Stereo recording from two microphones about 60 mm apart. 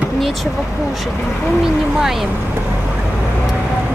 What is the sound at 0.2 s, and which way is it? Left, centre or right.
Speech, centre.